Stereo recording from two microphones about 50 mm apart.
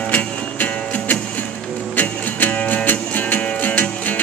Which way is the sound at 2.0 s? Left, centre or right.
Left.